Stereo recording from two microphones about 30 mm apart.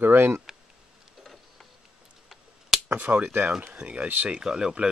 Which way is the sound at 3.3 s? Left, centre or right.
Right.